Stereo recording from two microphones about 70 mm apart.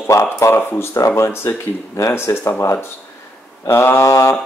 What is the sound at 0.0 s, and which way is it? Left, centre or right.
Speech, left.